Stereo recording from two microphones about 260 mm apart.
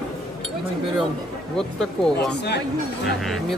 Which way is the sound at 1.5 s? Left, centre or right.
Centre.